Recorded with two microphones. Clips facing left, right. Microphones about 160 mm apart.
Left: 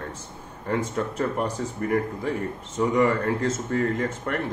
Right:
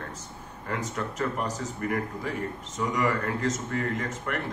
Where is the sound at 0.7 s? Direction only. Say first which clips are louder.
Left 6 dB; 30° left (ahead or behind).